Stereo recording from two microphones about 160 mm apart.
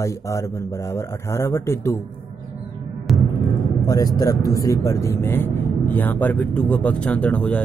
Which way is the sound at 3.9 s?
20° left (ahead or behind).